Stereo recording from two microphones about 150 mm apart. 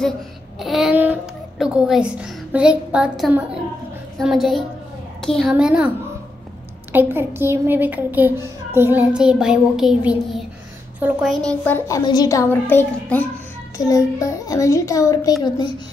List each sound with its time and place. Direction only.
0.6 s a sound: centre (ahead or behind)
0.9 s a woman's voice: 10° right (ahead or behind)
4.2 s a sound: centre (ahead or behind)
6.9 s a child's voice: 15° right (ahead or behind)
9.1 s a sound: 5° right (ahead or behind)
11.0 s a child's voice: 10° right (ahead or behind)
11.2 s a child's voice: 10° left (ahead or behind)
11.9 s a child's voice: 25° left (ahead or behind)
13.7 s a child's voice: 20° left (ahead or behind)